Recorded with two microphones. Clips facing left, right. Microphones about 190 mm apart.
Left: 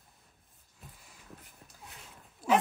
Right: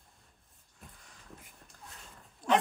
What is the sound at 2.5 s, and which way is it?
Dog, 5° left (ahead or behind).